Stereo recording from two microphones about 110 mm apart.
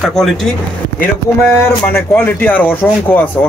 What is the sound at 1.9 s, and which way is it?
Speech, 15° left (ahead or behind).